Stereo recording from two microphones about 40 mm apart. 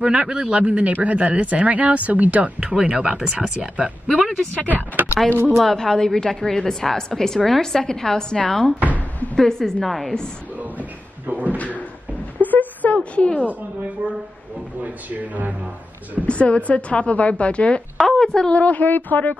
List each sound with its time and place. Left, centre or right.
0.0 s a man's voice: right
2.6 s a man's voice: right
4.6 s speech: right
5.3 s speech: right
5.6 s a woman's voice: centre
9.8 s a woman's voice: centre
10.6 s a sound: right
11.5 s speech: left
12.4 s a sound: left
12.9 s speech: left
14.8 s speech: right
16.3 s speech: left
18.0 s speech: centre
18.5 s speech: left